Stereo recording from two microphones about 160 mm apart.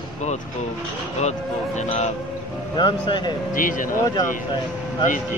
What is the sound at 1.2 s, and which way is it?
Speech, 45° left (ahead or behind).